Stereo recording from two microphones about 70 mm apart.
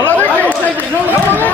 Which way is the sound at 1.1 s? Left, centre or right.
Right.